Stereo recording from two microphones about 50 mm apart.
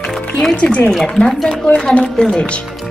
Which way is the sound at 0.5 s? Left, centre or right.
Left.